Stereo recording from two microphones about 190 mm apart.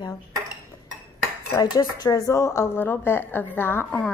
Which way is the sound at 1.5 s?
20° left (ahead or behind).